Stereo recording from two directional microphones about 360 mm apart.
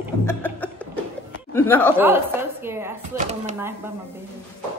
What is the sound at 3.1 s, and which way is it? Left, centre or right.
Speech, centre.